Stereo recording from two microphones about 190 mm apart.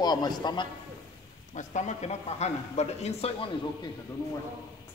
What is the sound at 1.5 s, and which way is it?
Speech, 40° left (ahead or behind).